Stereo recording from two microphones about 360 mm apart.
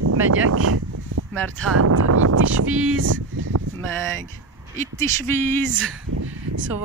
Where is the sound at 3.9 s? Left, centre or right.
Centre.